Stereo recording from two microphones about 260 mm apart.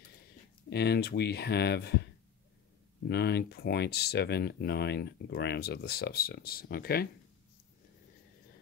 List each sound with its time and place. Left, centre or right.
0.7 s speech: left
3.1 s speech: left